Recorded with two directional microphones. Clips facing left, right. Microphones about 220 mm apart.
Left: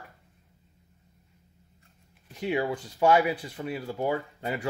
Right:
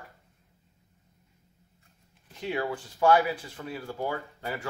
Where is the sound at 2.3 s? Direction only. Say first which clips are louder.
Left 3 dB; 15° left (ahead or behind).